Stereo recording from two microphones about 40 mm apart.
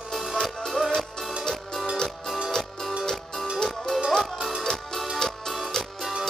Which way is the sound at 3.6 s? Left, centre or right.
Centre.